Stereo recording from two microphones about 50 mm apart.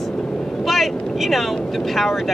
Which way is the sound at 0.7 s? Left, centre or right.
Centre.